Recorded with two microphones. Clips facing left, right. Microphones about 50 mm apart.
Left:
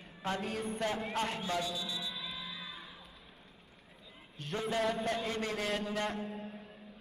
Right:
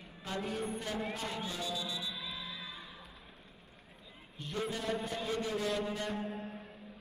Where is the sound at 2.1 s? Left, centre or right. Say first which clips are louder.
Even; centre.